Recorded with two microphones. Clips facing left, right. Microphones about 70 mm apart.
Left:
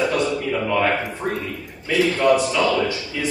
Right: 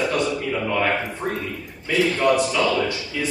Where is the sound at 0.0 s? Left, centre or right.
Centre.